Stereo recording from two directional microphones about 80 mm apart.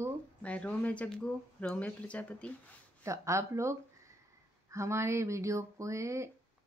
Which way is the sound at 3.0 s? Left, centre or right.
Right.